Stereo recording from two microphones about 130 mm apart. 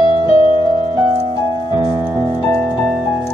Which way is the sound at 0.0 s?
45° left (ahead or behind).